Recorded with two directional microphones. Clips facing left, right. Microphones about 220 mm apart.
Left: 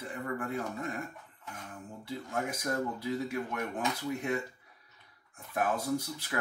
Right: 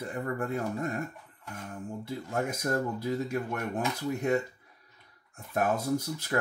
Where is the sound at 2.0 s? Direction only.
45° right (ahead or behind).